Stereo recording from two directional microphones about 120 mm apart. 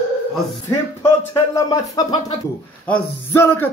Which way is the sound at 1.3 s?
30° left (ahead or behind).